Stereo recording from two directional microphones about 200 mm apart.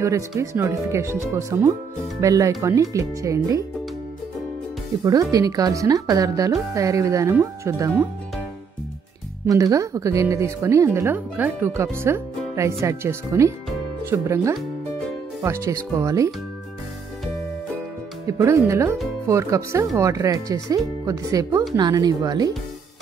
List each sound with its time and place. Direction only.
0.4 s speech: 15° right (ahead or behind)
5.3 s speech: 15° right (ahead or behind)
9.5 s speech: 15° right (ahead or behind)
18.2 s speech: 15° right (ahead or behind)